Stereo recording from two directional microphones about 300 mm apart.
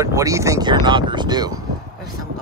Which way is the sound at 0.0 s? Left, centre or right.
Centre.